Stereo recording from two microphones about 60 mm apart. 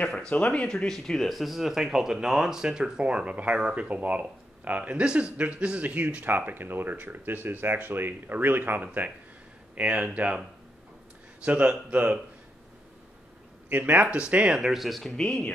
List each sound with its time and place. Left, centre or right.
0.5 s speech: centre; by 10.4 s right
11.4 s speech: right
13.7 s speech: right
14.0 s speech: centre